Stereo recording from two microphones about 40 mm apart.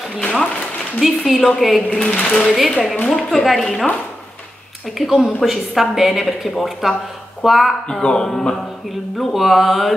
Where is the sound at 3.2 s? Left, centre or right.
Centre.